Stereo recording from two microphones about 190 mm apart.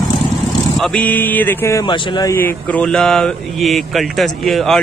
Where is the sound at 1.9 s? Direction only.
25° left (ahead or behind).